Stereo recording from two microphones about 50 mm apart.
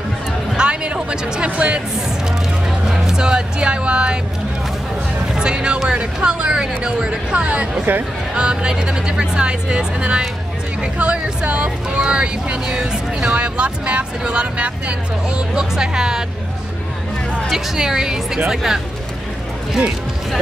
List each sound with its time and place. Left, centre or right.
0.6 s music: centre
2.9 s speech: centre
5.3 s speech: centre
17.5 s speech: centre